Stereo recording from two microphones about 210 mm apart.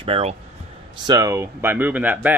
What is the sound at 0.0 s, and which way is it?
Speech, 30° right (ahead or behind).